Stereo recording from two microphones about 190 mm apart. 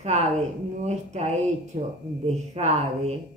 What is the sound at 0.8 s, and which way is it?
Speech, 35° right (ahead or behind).